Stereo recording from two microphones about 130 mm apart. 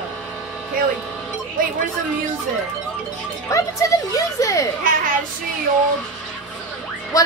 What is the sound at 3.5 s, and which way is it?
A woman's voice, 25° left (ahead or behind).